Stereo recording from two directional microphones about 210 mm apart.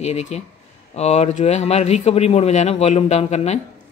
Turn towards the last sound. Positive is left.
turn(degrees=30)  # may be behind; listen again after turning